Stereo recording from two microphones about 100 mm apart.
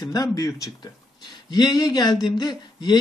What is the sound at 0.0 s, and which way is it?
Speech, 35° left (ahead or behind).